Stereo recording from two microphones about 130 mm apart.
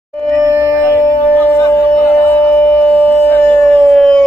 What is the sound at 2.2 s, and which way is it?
Howl, 15° left (ahead or behind).